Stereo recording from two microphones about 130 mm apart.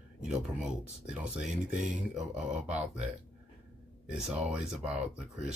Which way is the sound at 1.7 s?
75° right (ahead or behind).